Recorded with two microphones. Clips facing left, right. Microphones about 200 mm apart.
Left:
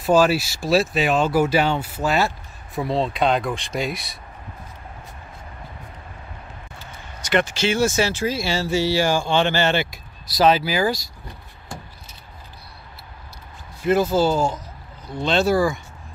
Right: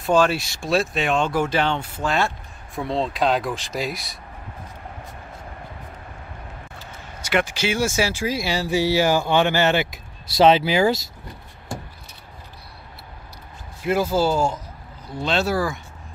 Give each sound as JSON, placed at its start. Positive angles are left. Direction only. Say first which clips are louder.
{"t": 0.0, "sound": "speech", "louder": "left 2 dB", "side_deg": 5}
{"t": 7.2, "sound": "speech", "louder": "left 2 dB", "side_deg": -10}
{"t": 13.8, "sound": "speech", "louder": "left 2 dB", "side_deg": -10}